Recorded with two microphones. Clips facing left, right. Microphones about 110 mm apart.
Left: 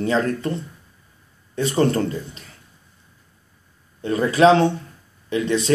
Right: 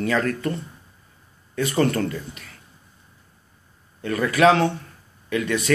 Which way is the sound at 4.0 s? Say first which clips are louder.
Left 3 dB; 25° left (ahead or behind).